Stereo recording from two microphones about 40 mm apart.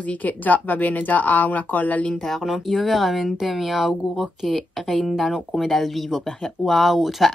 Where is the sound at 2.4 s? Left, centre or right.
Centre.